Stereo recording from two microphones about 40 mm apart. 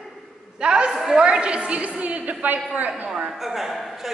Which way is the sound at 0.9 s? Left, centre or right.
Centre.